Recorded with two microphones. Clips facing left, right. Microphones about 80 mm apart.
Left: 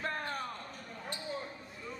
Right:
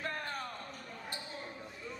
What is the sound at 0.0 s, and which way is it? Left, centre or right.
Basketball bounce, left.